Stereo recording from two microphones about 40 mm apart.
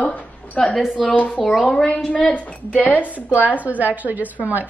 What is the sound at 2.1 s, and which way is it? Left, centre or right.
Speech, left.